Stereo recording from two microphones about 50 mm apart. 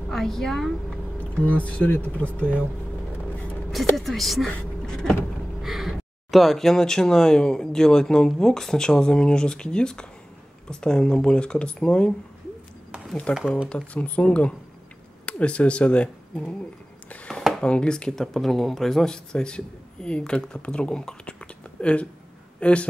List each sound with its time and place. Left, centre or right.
0.1 s speech: centre
1.3 s speech: left
3.9 s a woman's voice: centre
5.6 s speech: centre; by 12.1 s left
13.3 s speech: centre
13.9 s speech: left
17.6 s speech: centre